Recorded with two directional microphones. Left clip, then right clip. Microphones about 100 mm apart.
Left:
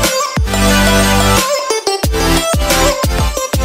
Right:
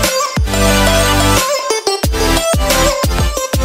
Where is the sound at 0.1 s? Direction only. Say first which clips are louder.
Even; centre (ahead or behind).